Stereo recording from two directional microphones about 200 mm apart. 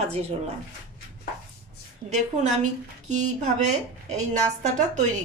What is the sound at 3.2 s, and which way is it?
A woman's voice, 35° right (ahead or behind).